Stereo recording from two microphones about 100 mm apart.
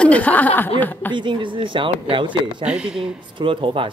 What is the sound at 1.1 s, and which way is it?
Speech, 50° right (ahead or behind).